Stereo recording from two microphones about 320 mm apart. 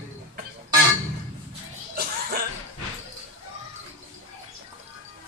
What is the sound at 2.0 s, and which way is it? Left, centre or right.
Cough, right.